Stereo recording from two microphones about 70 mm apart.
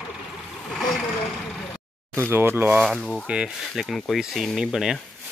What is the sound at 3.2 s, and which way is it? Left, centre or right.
Speech, centre.